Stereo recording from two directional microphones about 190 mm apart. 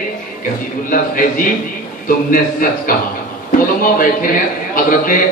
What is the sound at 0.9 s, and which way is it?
A man's voice, 45° left (ahead or behind).